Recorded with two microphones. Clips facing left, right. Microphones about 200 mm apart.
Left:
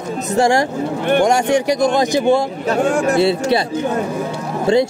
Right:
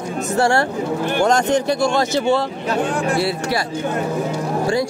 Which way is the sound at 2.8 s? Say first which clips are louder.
Left 5 dB; 45° left (ahead or behind).